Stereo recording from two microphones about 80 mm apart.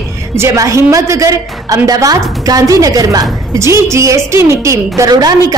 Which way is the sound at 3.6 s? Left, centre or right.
Right.